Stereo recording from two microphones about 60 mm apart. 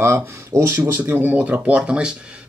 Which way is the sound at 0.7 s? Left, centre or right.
Right.